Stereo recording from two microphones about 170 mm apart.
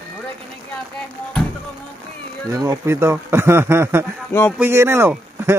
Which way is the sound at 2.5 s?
20° right (ahead or behind).